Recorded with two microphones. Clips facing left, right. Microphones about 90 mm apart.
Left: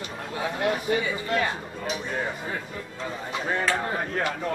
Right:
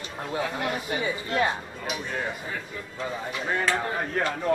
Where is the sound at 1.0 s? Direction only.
25° right (ahead or behind).